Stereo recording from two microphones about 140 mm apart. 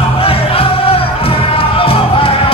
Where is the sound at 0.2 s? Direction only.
40° left (ahead or behind).